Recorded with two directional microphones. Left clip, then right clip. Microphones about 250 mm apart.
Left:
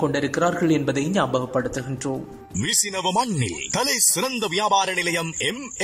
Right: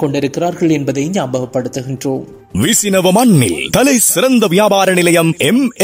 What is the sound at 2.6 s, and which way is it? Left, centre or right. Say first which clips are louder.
Speech: right 11 dB; right.